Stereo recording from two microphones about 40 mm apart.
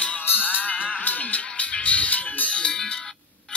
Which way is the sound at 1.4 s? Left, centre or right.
Left.